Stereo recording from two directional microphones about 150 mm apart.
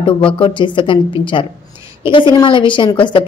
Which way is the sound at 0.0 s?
35° left (ahead or behind).